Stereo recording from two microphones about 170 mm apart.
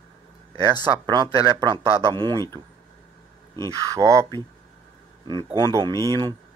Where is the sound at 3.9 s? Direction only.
20° right (ahead or behind).